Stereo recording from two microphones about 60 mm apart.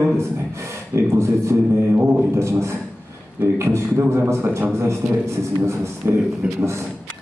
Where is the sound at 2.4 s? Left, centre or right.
Right.